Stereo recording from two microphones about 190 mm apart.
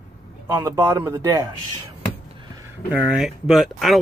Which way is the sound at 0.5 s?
15° right (ahead or behind).